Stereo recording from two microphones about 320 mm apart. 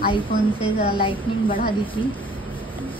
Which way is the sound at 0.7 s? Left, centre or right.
Left.